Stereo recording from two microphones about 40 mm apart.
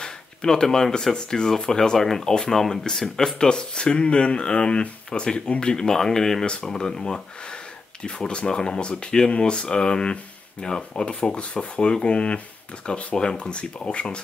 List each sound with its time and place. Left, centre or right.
0.0 s speech: centre
6.4 s speech: left